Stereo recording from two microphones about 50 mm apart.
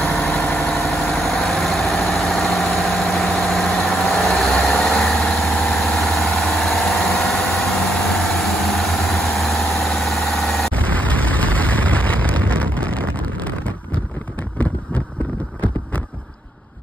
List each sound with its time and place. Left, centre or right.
0.3 s vehicle: left
0.8 s vehicle: centre
10.7 s a sound: left